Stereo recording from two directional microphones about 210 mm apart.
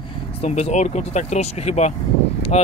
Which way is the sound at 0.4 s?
30° left (ahead or behind).